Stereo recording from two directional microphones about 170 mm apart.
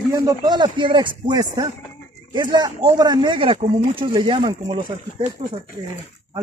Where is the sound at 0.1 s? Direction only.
20° right (ahead or behind).